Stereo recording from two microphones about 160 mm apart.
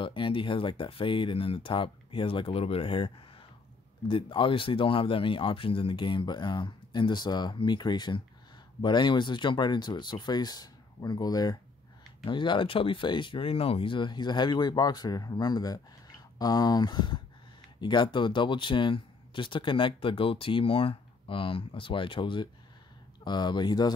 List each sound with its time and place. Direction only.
0.0 s speech: 30° left (ahead or behind)
4.1 s speech: 30° left (ahead or behind)